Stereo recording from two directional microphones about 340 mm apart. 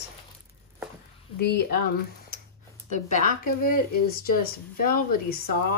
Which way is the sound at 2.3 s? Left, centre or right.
Left.